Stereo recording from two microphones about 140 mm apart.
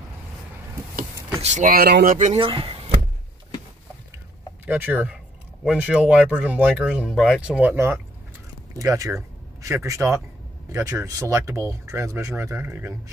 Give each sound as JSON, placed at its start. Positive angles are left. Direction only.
{"t": 1.4, "sound": "speech", "side_deg": -55}
{"t": 1.7, "sound": "speech", "side_deg": -80}
{"t": 2.3, "sound": "speech", "side_deg": -35}
{"t": 4.6, "sound": "speech", "side_deg": -10}